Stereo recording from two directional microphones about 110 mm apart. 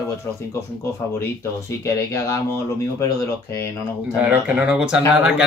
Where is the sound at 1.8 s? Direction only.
25° left (ahead or behind).